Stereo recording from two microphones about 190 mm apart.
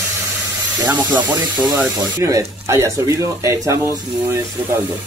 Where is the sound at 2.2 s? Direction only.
20° right (ahead or behind).